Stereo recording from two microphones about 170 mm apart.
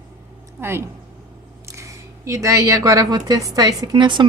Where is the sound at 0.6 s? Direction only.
15° right (ahead or behind).